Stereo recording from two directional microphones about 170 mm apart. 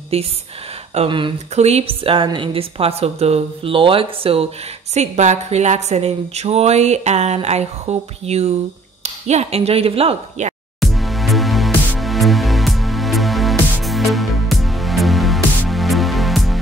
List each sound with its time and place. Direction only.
0.1 s a woman's voice: 35° right (ahead or behind)
10.8 s music: centre (ahead or behind)